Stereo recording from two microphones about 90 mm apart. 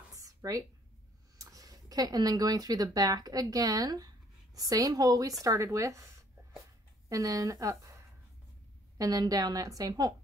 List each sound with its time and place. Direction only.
0.1 s a sound: 40° right (ahead or behind)
1.4 s speech: 40° right (ahead or behind)
7.1 s speech: 40° right (ahead or behind)
8.9 s a woman's voice: 45° right (ahead or behind)